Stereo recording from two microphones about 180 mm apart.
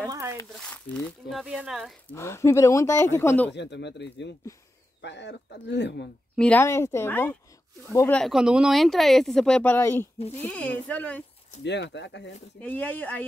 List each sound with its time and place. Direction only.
0.4 s speech: 10° left (ahead or behind)
2.1 s speech: 15° left (ahead or behind)
3.5 s speech: 75° left (ahead or behind)
6.3 s speech: 5° left (ahead or behind)
8.2 s speech: 5° right (ahead or behind)
11.6 s speech: 75° left (ahead or behind)
12.5 s speech: 10° left (ahead or behind)